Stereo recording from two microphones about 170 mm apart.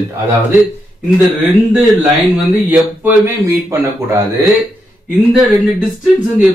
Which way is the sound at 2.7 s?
10° right (ahead or behind).